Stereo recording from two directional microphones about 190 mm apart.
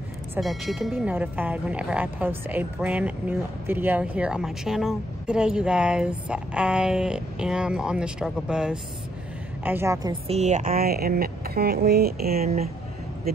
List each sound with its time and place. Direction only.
0.4 s a woman's voice: centre (ahead or behind)
10.2 s a woman's voice: 35° right (ahead or behind); by 12.4 s 55° right (ahead or behind)